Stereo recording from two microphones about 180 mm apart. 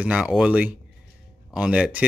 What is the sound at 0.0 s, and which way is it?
Speech, 5° right (ahead or behind).